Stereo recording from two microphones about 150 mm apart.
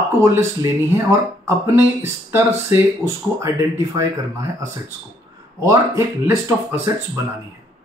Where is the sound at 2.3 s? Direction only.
15° right (ahead or behind).